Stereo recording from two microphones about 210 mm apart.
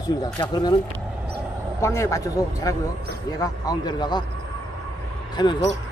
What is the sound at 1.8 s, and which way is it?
Speech, 15° left (ahead or behind).